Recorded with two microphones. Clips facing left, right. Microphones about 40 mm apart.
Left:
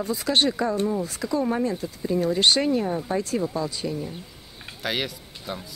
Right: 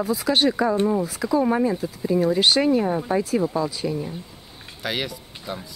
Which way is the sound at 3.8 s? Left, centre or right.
Centre.